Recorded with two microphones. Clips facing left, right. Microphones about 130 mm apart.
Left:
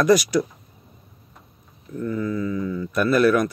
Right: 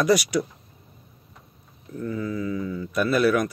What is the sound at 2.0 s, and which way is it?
Mantra, 25° right (ahead or behind).